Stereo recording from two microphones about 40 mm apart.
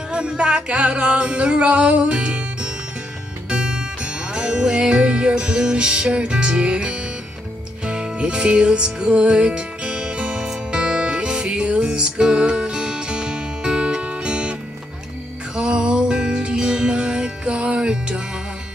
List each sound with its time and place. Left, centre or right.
0.1 s music: right
15.5 s music: right